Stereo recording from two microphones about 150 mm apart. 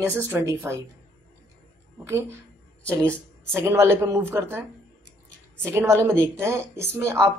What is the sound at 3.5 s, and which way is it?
A woman's voice, 15° right (ahead or behind).